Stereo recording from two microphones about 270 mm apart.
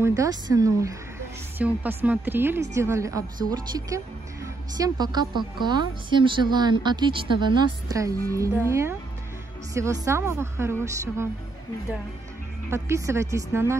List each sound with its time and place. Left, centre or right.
0.0 s a woman's voice: centre
10.0 s a woman's voice: centre
12.7 s a woman's voice: centre